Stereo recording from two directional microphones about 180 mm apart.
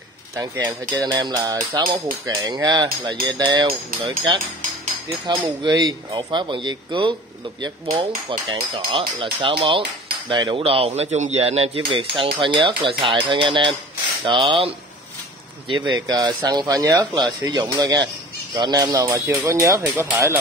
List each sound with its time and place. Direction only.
0.4 s speech: 20° right (ahead or behind)
5.2 s speech: 25° right (ahead or behind)
15.7 s speech: 25° right (ahead or behind)